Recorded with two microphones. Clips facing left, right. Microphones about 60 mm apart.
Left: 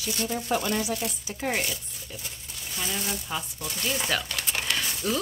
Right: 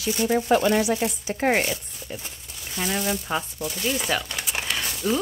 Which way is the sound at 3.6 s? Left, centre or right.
Centre.